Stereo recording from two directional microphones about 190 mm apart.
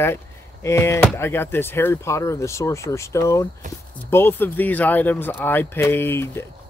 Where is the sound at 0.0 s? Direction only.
15° left (ahead or behind).